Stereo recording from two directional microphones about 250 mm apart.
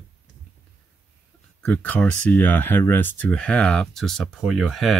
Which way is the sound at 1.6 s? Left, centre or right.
Centre.